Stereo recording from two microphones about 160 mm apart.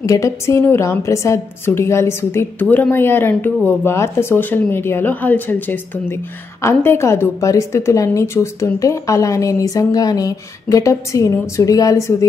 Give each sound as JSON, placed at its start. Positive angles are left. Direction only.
{"t": 0.0, "sound": "a woman's voice", "side_deg": 20}